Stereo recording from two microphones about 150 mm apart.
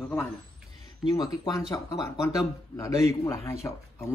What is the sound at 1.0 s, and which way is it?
A man's voice, 25° left (ahead or behind).